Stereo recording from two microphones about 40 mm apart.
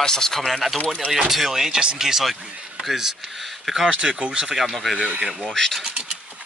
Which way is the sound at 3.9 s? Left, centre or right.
Right.